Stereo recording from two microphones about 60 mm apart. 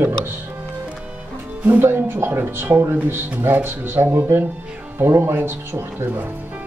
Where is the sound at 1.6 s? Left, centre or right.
Right.